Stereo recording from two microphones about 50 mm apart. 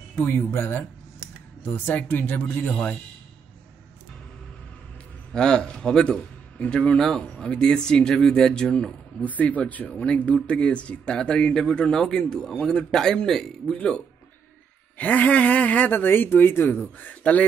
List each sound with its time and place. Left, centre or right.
0.1 s speech: left
1.6 s speech: left
5.3 s a man's voice: centre
7.0 s speech: centre
9.2 s speech: left; by 13.7 s centre
13.7 s a man's voice: left
15.9 s speech: left